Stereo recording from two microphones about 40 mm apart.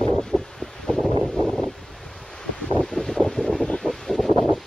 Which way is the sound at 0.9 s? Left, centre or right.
Centre.